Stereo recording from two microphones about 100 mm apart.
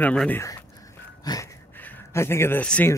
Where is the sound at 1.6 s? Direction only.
20° left (ahead or behind).